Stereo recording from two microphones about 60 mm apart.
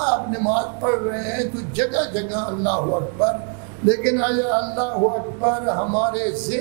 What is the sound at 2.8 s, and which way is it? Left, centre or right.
Speech, right.